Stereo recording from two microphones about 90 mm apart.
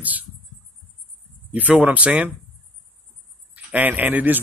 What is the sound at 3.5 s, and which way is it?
Speech, 20° right (ahead or behind).